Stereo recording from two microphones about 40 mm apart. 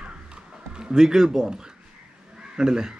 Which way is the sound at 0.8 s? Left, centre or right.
Centre.